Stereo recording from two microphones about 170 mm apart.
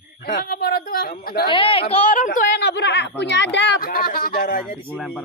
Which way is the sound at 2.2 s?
50° left (ahead or behind).